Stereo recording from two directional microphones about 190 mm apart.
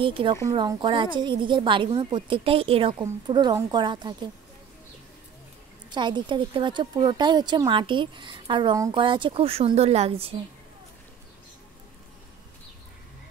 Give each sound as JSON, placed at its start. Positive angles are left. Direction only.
{"t": 0.0, "sound": "speech", "side_deg": -25}
{"t": 5.9, "sound": "speech", "side_deg": -25}